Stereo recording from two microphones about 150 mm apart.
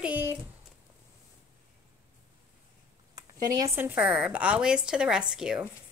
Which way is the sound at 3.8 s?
10° right (ahead or behind).